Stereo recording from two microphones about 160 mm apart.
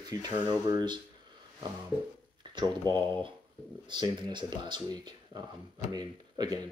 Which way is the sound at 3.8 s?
30° right (ahead or behind).